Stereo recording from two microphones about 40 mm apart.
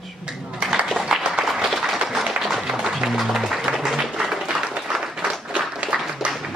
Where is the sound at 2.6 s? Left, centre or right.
Centre.